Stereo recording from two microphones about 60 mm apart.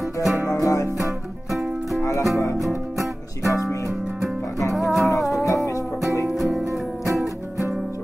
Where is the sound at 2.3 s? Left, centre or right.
Left.